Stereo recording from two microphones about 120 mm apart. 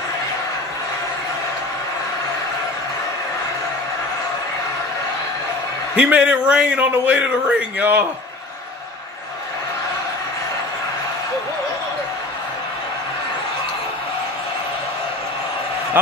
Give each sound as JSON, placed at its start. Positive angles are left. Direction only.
{"t": 5.9, "sound": "speech", "side_deg": -10}